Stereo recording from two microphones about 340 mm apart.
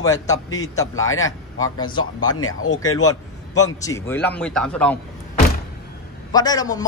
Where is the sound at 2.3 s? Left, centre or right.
Left.